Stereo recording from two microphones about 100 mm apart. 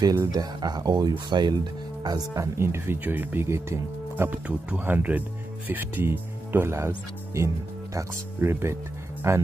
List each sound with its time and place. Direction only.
0.1 s speech: 35° right (ahead or behind)